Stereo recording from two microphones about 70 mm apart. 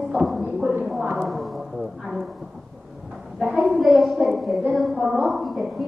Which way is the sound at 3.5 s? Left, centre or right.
Centre.